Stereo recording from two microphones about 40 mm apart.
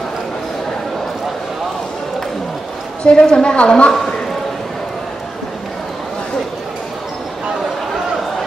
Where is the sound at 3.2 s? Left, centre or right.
Left.